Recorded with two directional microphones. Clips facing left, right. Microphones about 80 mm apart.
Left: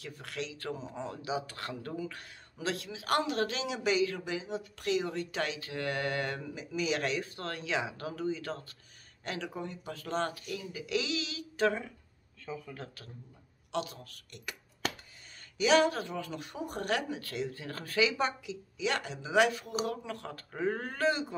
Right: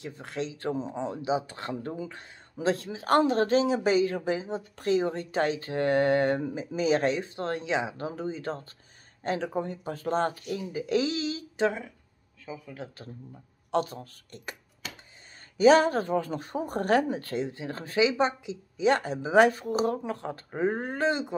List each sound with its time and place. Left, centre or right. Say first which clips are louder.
0.0 s speech: right 6 dB; right
11.6 s speech: right 2 dB; centre
13.7 s speech: right 8 dB; right
17.5 s speech: right 5 dB; right